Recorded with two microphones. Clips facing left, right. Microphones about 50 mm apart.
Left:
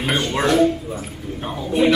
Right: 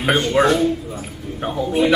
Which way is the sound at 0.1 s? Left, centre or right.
Centre.